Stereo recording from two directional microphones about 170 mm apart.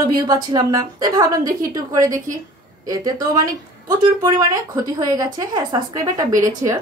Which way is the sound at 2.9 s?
20° right (ahead or behind).